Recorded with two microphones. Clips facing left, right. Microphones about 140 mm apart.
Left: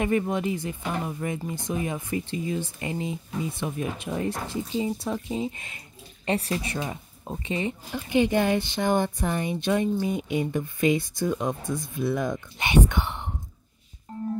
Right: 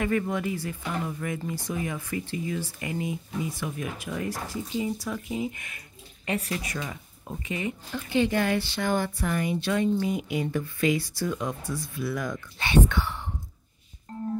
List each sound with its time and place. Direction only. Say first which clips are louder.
0.0 s speech: left 2 dB; 20° left (ahead or behind)
7.9 s speech: left 2 dB; 15° left (ahead or behind)
14.1 s music: left 1 dB; 5° left (ahead or behind)